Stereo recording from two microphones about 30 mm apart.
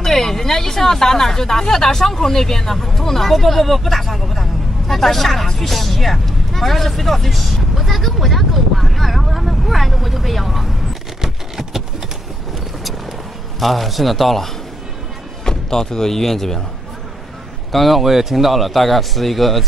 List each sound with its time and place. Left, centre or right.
0.0 s speech: centre
11.2 s a sound: centre
13.6 s a man's voice: centre
15.4 s music: left
16.2 s a man's voice: centre
17.6 s a man's voice: centre